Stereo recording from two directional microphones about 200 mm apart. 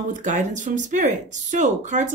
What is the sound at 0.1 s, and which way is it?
Speech, 40° right (ahead or behind).